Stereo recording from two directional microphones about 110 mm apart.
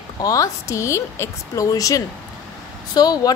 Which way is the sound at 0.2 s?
30° left (ahead or behind).